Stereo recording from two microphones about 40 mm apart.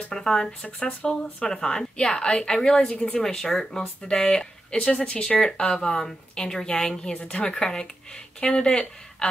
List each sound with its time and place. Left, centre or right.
0.1 s a woman's voice: centre
5.1 s a woman's voice: left